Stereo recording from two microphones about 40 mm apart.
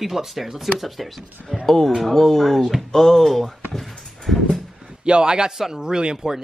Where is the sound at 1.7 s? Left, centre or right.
Centre.